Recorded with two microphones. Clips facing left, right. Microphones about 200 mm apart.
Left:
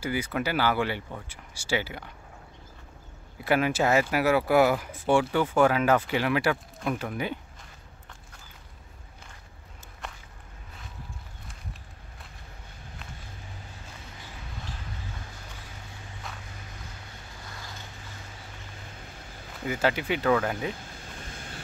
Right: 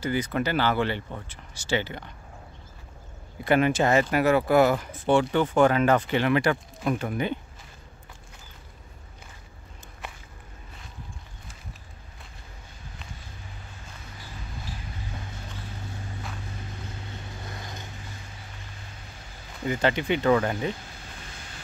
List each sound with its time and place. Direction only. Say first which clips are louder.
0.0 s speech: right 3 dB; 10° left (ahead or behind)
3.4 s speech: right 2 dB; 5° left (ahead or behind)
17.6 s vehicle: right 4 dB; 20° right (ahead or behind)
19.6 s speech: right 2 dB; 5° left (ahead or behind)
21.3 s vehicle: left 3 dB; 50° left (ahead or behind)